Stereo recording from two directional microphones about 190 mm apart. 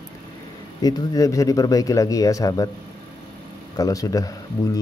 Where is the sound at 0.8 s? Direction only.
20° left (ahead or behind).